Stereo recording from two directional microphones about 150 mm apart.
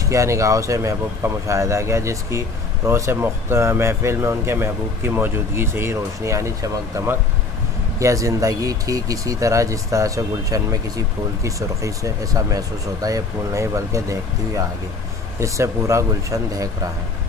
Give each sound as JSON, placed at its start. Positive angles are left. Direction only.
{"t": 0.0, "sound": "speech", "side_deg": -20}